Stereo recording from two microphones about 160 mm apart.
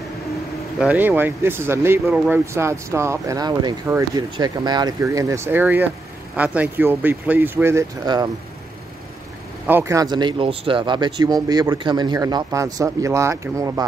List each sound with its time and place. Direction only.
0.7 s speech: 10° right (ahead or behind); by 8.3 s 25° right (ahead or behind)
9.7 s speech: 15° right (ahead or behind)